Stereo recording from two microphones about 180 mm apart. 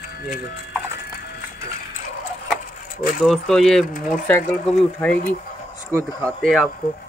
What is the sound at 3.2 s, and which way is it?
Speech, centre (ahead or behind).